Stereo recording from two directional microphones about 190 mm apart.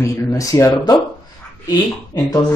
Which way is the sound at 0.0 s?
15° left (ahead or behind).